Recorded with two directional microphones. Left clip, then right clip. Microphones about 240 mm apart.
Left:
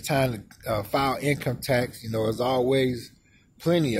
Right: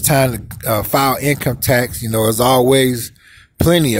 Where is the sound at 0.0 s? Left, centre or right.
Right.